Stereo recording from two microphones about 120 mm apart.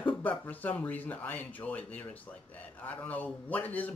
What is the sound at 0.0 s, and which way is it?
Speech, 15° left (ahead or behind).